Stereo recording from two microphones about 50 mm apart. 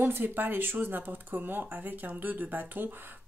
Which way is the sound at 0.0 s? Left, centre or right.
Right.